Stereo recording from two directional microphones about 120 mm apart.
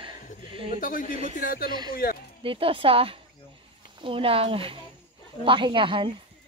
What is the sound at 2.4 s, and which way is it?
Speech, 50° right (ahead or behind).